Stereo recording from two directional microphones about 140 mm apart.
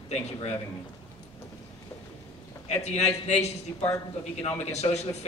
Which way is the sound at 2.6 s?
55° left (ahead or behind).